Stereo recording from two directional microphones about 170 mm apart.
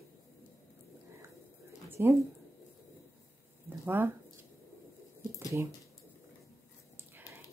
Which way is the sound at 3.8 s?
10° right (ahead or behind).